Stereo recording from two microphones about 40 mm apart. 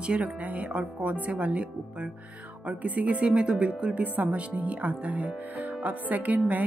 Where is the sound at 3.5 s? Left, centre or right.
Right.